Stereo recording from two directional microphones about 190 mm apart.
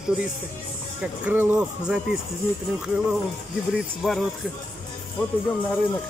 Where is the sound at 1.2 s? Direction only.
10° right (ahead or behind).